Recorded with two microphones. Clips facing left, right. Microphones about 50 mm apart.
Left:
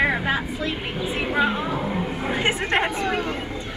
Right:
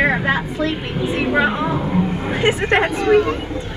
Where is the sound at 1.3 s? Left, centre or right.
Right.